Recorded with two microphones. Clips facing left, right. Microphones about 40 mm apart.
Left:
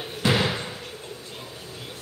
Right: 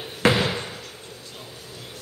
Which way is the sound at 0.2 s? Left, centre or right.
Right.